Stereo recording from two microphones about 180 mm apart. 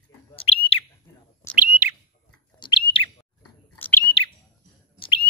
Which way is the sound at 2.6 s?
25° left (ahead or behind).